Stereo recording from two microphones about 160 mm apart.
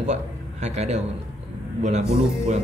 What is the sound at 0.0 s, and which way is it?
A man's voice, 45° right (ahead or behind).